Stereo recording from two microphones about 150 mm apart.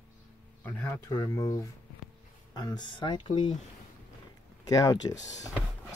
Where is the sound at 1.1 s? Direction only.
25° left (ahead or behind).